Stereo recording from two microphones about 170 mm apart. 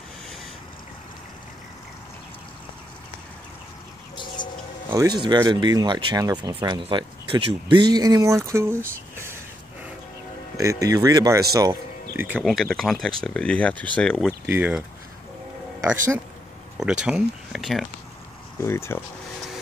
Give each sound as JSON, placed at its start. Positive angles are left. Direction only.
{"t": 4.2, "sound": "bird", "side_deg": 30}
{"t": 4.8, "sound": "speech", "side_deg": -20}
{"t": 10.6, "sound": "speech", "side_deg": -20}
{"t": 12.2, "sound": "speech", "side_deg": -10}
{"t": 12.4, "sound": "speech", "side_deg": 0}
{"t": 14.4, "sound": "speech", "side_deg": -10}
{"t": 16.7, "sound": "speech", "side_deg": -5}
{"t": 18.6, "sound": "speech", "side_deg": 15}